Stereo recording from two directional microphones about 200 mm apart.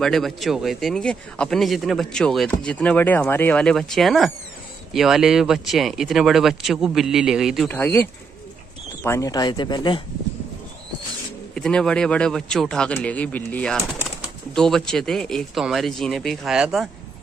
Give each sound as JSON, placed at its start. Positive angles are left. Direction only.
{"t": 0.0, "sound": "speech", "side_deg": 0}
{"t": 7.7, "sound": "speech", "side_deg": 10}
{"t": 11.5, "sound": "speech", "side_deg": 5}